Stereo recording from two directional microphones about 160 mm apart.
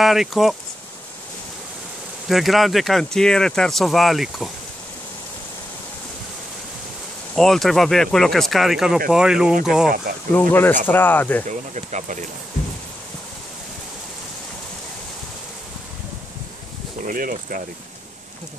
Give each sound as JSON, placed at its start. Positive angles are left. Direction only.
{"t": 0.0, "sound": "speech", "side_deg": 0}
{"t": 2.2, "sound": "speech", "side_deg": 0}
{"t": 7.3, "sound": "speech", "side_deg": 0}
{"t": 10.3, "sound": "speech", "side_deg": 15}
{"t": 11.4, "sound": "speech", "side_deg": -50}
{"t": 17.0, "sound": "speech", "side_deg": -60}